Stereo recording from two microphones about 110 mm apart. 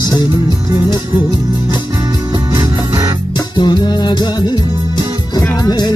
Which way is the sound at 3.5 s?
40° left (ahead or behind).